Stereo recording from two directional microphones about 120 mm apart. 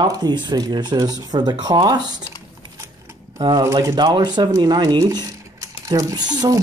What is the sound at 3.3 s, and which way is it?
Speech, 40° right (ahead or behind).